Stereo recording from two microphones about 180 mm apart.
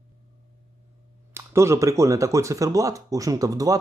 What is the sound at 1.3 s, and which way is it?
Speech, 15° right (ahead or behind).